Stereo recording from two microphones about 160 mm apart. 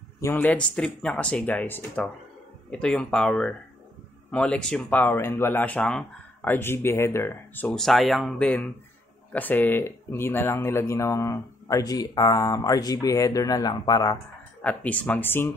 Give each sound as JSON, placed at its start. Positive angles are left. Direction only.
{"t": 0.2, "sound": "speech", "side_deg": 15}
{"t": 7.7, "sound": "speech", "side_deg": 0}
{"t": 14.6, "sound": "speech", "side_deg": 10}